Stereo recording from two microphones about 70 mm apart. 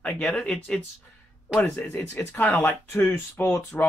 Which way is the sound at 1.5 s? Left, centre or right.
Left.